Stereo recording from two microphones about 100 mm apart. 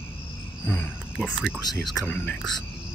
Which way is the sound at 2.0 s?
15° left (ahead or behind).